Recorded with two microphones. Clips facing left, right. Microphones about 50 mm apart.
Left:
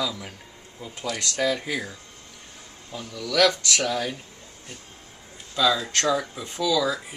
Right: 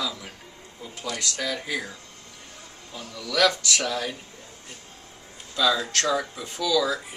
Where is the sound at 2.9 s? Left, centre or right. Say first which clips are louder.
Left 3 dB; centre.